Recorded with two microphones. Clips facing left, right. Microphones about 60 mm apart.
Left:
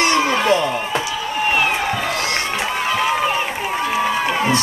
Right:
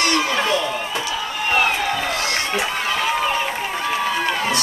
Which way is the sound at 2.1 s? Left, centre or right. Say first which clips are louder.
Left 1 dB; left.